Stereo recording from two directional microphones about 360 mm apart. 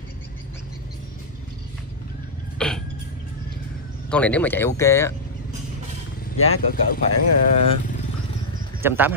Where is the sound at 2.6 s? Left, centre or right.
Centre.